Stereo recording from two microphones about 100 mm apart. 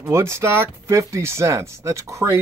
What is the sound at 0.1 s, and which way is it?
Speech, 25° right (ahead or behind).